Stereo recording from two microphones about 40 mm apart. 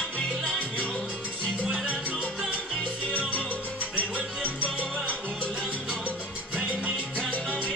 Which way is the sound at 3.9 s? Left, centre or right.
Right.